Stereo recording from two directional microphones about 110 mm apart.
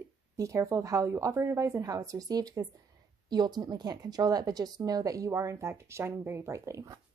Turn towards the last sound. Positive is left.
turn(degrees=-30)  # may be behind; listen again after turning